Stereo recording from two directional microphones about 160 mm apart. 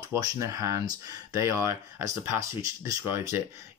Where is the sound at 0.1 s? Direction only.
20° right (ahead or behind).